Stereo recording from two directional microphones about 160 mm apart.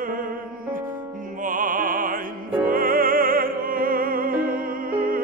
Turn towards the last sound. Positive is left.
turn(degrees=-60)  # may be behind; listen again after turning